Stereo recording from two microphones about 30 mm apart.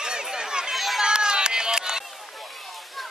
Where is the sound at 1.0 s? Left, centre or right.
Right.